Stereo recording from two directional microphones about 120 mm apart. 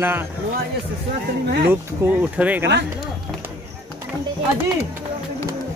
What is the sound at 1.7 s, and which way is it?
Speech, 15° right (ahead or behind).